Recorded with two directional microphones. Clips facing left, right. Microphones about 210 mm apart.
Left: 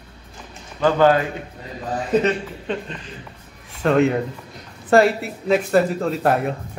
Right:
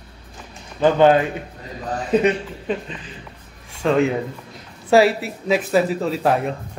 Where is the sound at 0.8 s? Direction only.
20° right (ahead or behind).